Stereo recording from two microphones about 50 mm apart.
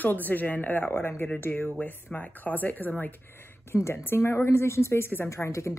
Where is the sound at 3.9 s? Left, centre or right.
Left.